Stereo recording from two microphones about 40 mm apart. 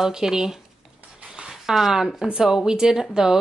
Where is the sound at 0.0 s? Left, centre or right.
Centre.